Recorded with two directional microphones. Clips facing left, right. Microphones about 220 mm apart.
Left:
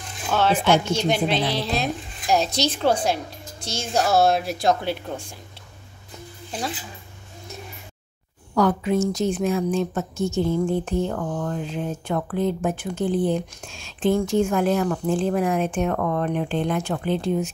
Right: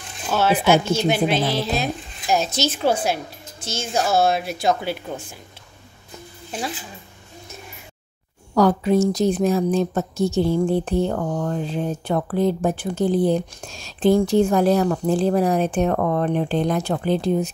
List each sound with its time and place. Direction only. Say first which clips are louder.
0.3 s speech: right 2 dB; 5° right (ahead or behind)
8.5 s speech: right 3 dB; 35° right (ahead or behind)